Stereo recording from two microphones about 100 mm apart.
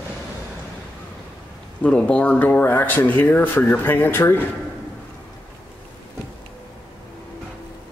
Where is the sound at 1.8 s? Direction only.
10° left (ahead or behind).